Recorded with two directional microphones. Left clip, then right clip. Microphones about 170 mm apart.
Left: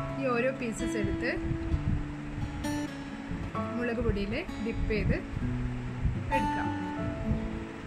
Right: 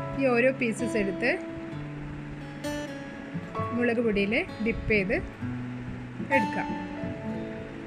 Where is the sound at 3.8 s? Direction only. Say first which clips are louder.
Right 8 dB; 20° right (ahead or behind).